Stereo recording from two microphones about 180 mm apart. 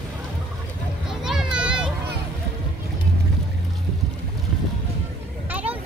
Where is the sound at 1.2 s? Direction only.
5° right (ahead or behind).